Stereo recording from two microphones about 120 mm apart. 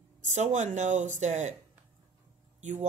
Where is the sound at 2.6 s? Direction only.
90° right.